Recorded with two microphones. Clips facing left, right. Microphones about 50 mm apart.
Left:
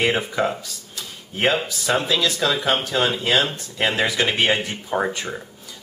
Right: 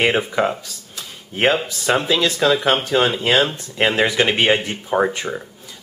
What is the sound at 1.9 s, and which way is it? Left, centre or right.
Speech, centre.